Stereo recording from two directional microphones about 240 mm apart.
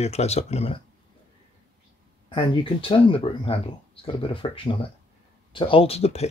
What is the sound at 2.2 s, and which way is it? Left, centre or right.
Speech, centre.